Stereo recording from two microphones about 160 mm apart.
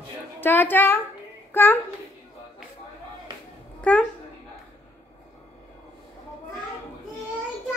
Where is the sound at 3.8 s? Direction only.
10° left (ahead or behind).